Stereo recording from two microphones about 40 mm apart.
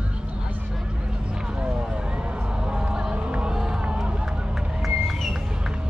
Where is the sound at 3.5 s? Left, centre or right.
Centre.